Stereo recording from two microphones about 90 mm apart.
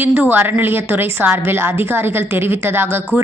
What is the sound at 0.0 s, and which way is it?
A man's voice, 20° right (ahead or behind).